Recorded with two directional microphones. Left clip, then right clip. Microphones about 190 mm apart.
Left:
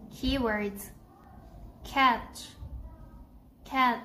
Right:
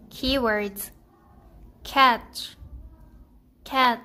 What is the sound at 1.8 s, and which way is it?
Speech, 55° right (ahead or behind).